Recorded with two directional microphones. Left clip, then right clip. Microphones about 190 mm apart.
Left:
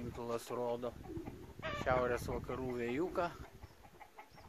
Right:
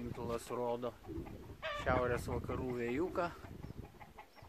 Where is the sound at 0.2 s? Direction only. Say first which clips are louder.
Even; centre (ahead or behind).